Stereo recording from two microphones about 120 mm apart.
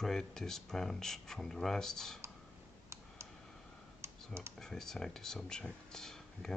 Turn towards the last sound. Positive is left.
turn(degrees=5)  # may be behind; listen again after turning